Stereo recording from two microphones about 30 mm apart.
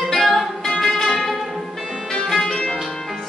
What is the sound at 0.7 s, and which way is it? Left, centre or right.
Music, centre.